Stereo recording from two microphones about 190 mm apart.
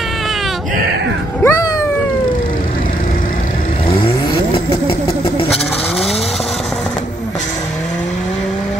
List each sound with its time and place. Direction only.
1.4 s cat: 15° left (ahead or behind)
4.8 s vehicle: 30° left (ahead or behind)